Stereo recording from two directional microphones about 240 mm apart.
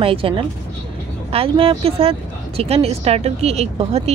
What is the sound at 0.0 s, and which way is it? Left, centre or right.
Speech, right.